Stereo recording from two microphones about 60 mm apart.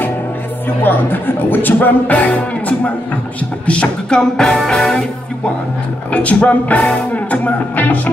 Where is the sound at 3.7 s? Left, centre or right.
Centre.